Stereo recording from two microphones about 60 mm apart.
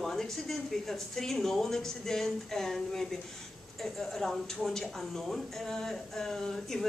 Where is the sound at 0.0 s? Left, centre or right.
Centre.